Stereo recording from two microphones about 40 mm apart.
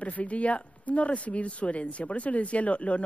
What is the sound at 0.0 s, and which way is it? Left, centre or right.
Speech, left.